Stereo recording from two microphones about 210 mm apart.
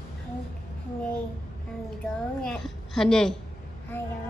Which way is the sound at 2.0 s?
5° left (ahead or behind).